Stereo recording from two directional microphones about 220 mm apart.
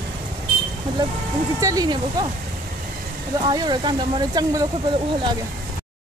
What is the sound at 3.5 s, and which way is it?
Speech, 20° right (ahead or behind).